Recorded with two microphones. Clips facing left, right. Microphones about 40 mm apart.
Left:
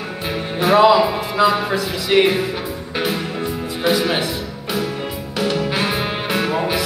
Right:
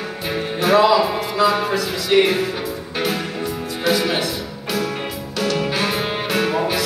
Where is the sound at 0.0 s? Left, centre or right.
Centre.